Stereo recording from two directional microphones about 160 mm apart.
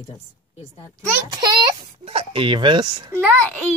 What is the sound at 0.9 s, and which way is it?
A child's voice, 25° right (ahead or behind).